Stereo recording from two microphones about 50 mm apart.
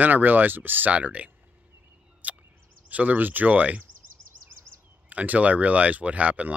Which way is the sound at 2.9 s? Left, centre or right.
Right.